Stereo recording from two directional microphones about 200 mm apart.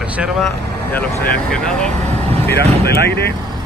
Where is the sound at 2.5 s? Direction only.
55° left (ahead or behind).